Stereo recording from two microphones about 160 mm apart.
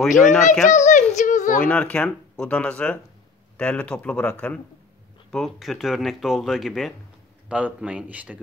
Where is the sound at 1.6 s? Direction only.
10° left (ahead or behind).